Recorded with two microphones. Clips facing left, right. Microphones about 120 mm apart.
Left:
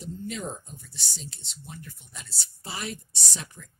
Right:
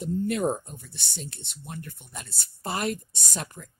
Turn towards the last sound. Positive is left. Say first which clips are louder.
# right 5 dB
turn(degrees=-50)  # may be behind; listen again after turning